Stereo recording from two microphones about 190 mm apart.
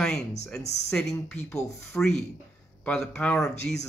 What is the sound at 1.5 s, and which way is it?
Speech, 15° left (ahead or behind).